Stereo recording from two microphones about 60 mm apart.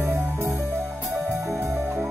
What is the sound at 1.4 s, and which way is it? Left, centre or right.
Music, right.